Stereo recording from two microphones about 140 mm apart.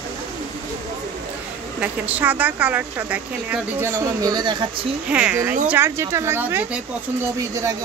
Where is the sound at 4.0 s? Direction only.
25° right (ahead or behind).